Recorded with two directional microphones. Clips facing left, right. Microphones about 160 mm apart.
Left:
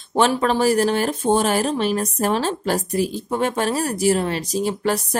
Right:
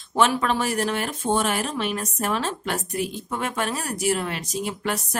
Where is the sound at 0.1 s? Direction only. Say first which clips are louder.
Left 3 dB; 30° left (ahead or behind).